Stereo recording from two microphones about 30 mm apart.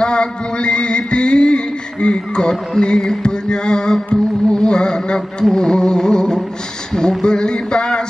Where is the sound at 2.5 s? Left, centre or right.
Left.